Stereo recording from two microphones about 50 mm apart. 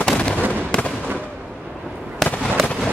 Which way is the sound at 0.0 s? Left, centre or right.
Left.